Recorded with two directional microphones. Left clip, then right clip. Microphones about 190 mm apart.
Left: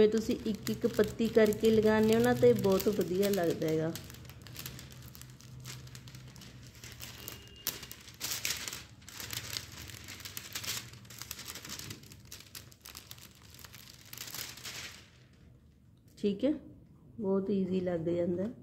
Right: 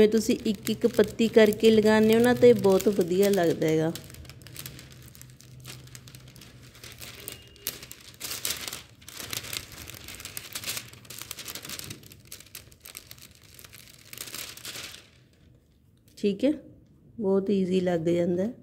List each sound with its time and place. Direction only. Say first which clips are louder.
0.0 s speech: right 6 dB; 25° right (ahead or behind)
2.6 s speech: right 7 dB; 10° right (ahead or behind)
3.3 s speech: right 7 dB; 25° right (ahead or behind)
7.7 s a sound: right 2 dB; 10° right (ahead or behind)
9.0 s crumpling: right 6 dB; 20° right (ahead or behind)
11.1 s crumpling: right 5 dB; 20° right (ahead or behind)
12.8 s crumpling: right 3 dB; 10° right (ahead or behind)
16.2 s speech: right 6 dB; 20° right (ahead or behind)